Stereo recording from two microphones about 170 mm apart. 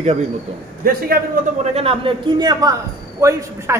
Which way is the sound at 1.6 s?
40° right (ahead or behind).